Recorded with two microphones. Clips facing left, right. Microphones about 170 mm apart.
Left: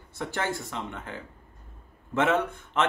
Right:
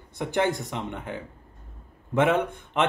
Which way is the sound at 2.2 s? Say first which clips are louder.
Right 2 dB; 15° right (ahead or behind).